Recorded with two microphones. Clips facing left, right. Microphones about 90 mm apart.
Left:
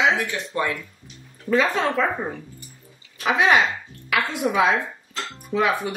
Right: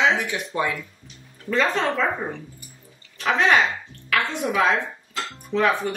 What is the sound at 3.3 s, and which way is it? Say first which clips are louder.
Speech: left 1 dB; 5° left (ahead or behind).